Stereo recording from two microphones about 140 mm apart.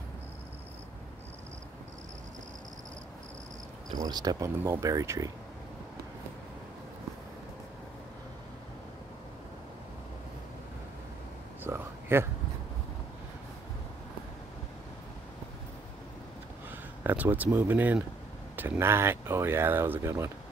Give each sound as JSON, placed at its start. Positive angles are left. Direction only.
{"t": 4.0, "sound": "speech", "side_deg": -30}
{"t": 11.6, "sound": "a sound", "side_deg": -15}
{"t": 17.0, "sound": "speech", "side_deg": -15}